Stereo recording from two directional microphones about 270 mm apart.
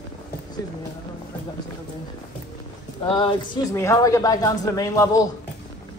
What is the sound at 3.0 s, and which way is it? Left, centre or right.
Speech, centre.